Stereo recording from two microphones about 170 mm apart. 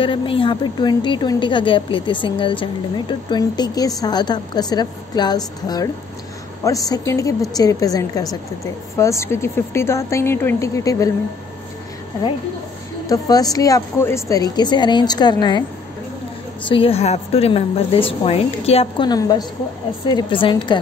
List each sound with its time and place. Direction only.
0.0 s a woman's voice: 30° left (ahead or behind)
13.1 s a woman's voice: 20° left (ahead or behind)
16.6 s a woman's voice: 30° left (ahead or behind)
19.0 s a woman's voice: 25° left (ahead or behind)